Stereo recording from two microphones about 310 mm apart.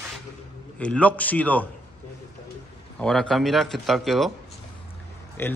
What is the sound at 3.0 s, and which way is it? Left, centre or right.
Speech, centre.